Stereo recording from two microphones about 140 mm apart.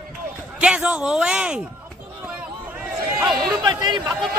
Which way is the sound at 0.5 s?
10° right (ahead or behind).